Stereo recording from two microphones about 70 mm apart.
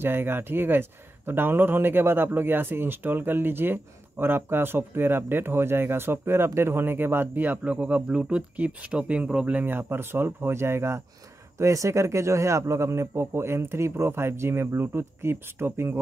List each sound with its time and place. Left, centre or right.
0.0 s speech: right
9.6 s speech: right